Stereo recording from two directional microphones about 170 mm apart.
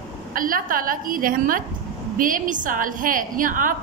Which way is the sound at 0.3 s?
55° right (ahead or behind).